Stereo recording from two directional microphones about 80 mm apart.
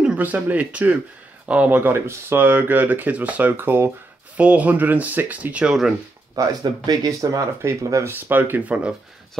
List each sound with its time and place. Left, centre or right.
0.0 s speech: centre
4.4 s speech: centre
6.3 s speech: right; by 8.9 s centre